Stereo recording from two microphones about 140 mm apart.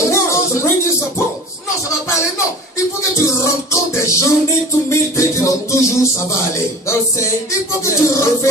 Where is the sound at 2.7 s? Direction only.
20° left (ahead or behind).